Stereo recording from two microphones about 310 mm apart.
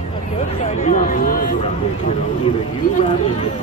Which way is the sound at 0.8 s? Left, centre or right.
Left.